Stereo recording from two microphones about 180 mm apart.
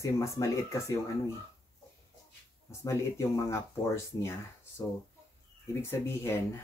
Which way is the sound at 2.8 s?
15° left (ahead or behind).